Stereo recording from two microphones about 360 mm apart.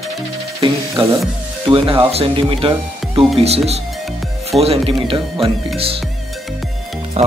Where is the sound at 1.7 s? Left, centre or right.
Centre.